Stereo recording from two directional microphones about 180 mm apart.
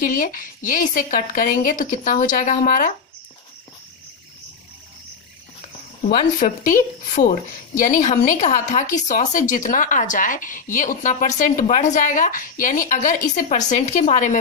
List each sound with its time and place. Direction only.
0.0 s a woman's voice: 50° left (ahead or behind)
6.0 s a woman's voice: 45° left (ahead or behind)